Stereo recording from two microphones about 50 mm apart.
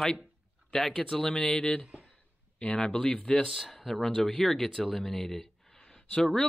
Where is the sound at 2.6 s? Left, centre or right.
Left.